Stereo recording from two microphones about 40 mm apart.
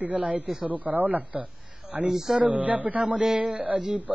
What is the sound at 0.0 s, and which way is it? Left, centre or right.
Speech, right.